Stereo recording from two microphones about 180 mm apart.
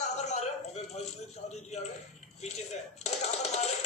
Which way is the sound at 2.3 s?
40° left (ahead or behind).